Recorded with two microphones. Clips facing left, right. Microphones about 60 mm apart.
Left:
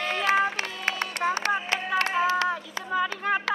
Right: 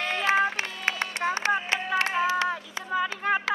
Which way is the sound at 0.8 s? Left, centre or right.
Right.